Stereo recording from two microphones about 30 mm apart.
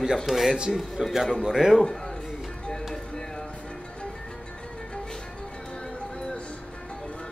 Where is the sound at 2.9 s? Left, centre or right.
Left.